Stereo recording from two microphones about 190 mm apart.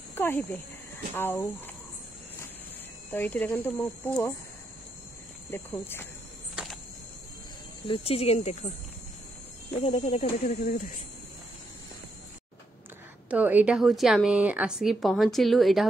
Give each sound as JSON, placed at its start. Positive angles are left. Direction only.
{"t": 0.1, "sound": "speech", "side_deg": 10}
{"t": 3.1, "sound": "speech", "side_deg": 10}
{"t": 5.5, "sound": "speech", "side_deg": 10}
{"t": 6.5, "sound": "a sound", "side_deg": 0}
{"t": 7.8, "sound": "speech", "side_deg": 30}
{"t": 9.7, "sound": "speech", "side_deg": 30}
{"t": 13.3, "sound": "a woman's voice", "side_deg": -10}